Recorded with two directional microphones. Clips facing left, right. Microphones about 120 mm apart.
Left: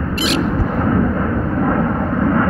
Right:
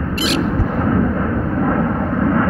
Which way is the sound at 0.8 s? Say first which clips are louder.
Even; 50° left (ahead or behind).